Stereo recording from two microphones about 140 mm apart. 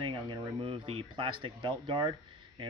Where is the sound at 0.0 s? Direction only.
35° right (ahead or behind).